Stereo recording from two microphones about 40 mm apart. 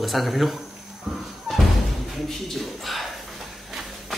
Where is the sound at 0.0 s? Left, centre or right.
Centre.